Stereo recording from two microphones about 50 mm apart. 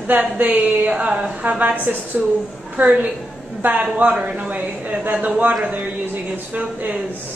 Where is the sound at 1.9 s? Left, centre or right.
Right.